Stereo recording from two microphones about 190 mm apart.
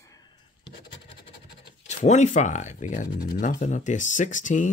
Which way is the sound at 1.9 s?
35° left (ahead or behind).